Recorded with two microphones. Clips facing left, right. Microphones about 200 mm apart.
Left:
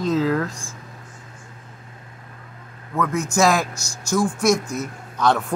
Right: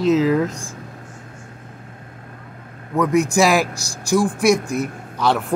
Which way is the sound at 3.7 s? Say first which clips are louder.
Right 4 dB; 35° right (ahead or behind).